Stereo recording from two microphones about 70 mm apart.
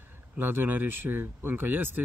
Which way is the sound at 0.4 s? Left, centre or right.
Right.